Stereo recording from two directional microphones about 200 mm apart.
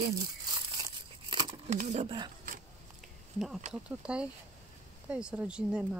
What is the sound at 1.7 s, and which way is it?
Speech, 35° right (ahead or behind).